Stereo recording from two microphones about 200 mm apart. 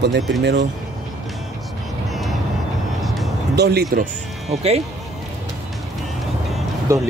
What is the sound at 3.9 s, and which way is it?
Speech, 35° right (ahead or behind).